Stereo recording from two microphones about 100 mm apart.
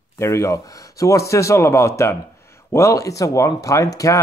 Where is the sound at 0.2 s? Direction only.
30° left (ahead or behind).